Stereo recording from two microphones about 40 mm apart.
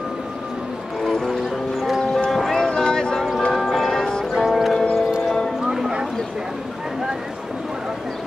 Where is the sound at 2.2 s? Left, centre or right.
Centre.